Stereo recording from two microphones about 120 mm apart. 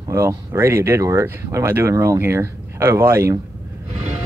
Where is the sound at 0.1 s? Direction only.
20° right (ahead or behind).